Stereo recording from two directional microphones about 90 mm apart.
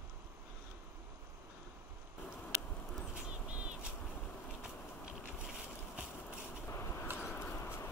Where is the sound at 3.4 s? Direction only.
15° right (ahead or behind).